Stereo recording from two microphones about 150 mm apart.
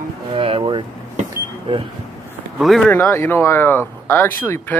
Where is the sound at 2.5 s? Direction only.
Centre (ahead or behind).